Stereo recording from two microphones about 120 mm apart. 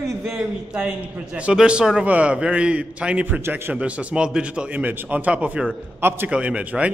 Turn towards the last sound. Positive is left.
turn(degrees=-10)  # may be behind; listen again after turning